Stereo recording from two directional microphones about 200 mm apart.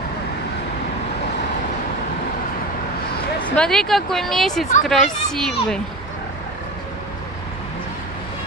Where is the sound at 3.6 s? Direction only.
Centre (ahead or behind).